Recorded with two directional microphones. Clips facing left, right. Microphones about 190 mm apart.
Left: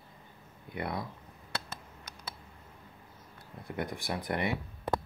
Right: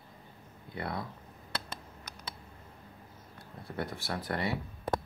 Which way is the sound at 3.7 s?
15° left (ahead or behind).